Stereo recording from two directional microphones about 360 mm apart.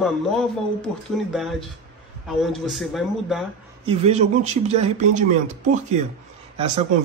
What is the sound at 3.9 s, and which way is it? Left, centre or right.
A man's voice, centre.